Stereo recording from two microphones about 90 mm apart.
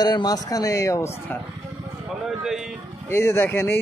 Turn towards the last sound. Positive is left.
turn(degrees=25)  # may be behind; listen again after turning